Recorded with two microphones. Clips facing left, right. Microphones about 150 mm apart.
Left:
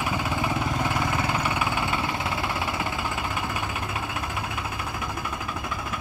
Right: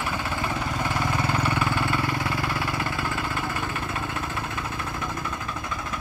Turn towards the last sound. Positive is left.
turn(degrees=10)  # may be behind; listen again after turning